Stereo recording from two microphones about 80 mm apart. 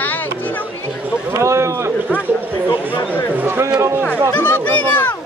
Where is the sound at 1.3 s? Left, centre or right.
Right.